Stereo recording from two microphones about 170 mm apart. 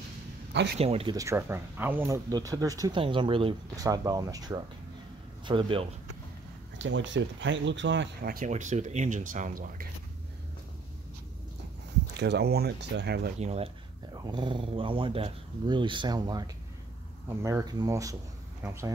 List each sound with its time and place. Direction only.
0.7 s speech: 35° right (ahead or behind)
1.1 s speech: 15° right (ahead or behind)
3.0 s speech: 30° right (ahead or behind)
3.8 s speech: 20° right (ahead or behind)
6.8 s speech: 90° right; by 9.8 s 55° right (ahead or behind)
12.1 s speech: 85° right
13.4 s speech: 40° right (ahead or behind)
14.1 s speech: 25° right (ahead or behind)